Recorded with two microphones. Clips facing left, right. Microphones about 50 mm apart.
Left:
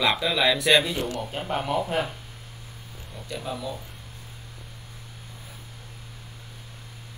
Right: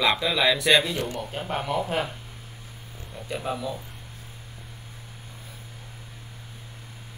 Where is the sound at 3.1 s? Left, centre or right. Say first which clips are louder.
Right 3 dB; centre.